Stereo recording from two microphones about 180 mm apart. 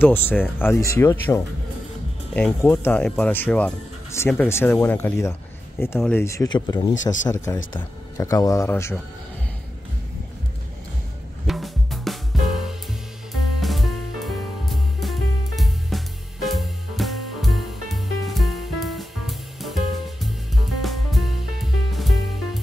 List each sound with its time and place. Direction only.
0.0 s speech: 10° left (ahead or behind)
6.2 s speech: 20° left (ahead or behind)
11.4 s drum kit: centre (ahead or behind)
13.3 s music: centre (ahead or behind)